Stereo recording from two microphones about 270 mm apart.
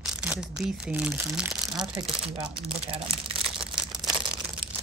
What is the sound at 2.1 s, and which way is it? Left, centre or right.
Speech, centre.